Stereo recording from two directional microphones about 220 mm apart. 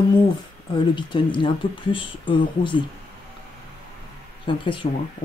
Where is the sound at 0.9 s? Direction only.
20° left (ahead or behind).